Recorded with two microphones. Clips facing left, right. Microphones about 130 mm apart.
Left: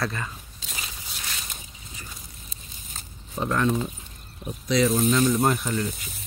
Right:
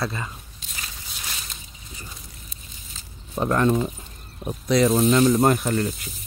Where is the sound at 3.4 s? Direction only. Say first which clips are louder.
Right 4 dB; 40° right (ahead or behind).